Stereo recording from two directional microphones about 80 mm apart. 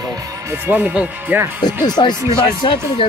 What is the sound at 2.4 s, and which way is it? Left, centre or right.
Speech, left.